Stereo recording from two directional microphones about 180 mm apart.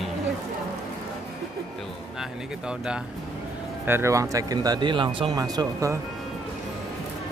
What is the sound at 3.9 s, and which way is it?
Speech, 15° right (ahead or behind).